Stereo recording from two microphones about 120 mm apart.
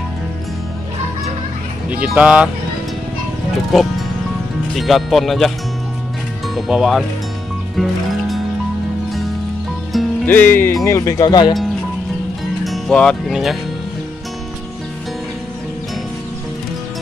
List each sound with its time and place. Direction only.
1.9 s speech: 10° right (ahead or behind)
4.7 s speech: centre (ahead or behind)
6.5 s speech: centre (ahead or behind)
7.7 s music: centre (ahead or behind)
10.2 s music: 15° left (ahead or behind); by 11.5 s 35° left (ahead or behind)
12.6 s music: centre (ahead or behind)
13.3 s speech: centre (ahead or behind)